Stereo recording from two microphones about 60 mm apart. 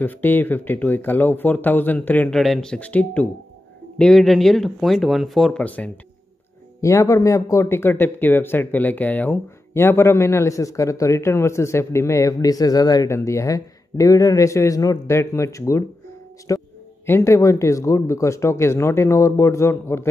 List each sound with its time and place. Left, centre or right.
0.0 s speech: left
2.3 s speech: centre
2.6 s speech: centre
2.9 s speech: left
4.0 s speech: centre
5.5 s speech: left
6.8 s speech: left
7.7 s speech: left
9.8 s speech: left
13.1 s speech: left
16.5 s a sound: left
17.2 s speech: left